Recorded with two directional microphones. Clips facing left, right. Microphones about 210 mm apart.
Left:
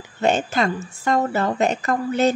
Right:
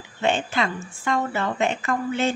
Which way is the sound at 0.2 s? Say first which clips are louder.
Left 3 dB; 40° left (ahead or behind).